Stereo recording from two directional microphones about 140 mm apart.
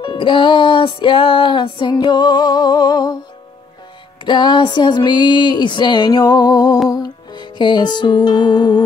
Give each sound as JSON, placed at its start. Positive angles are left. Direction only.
{"t": 0.0, "sound": "music", "side_deg": 35}
{"t": 4.2, "sound": "music", "side_deg": 35}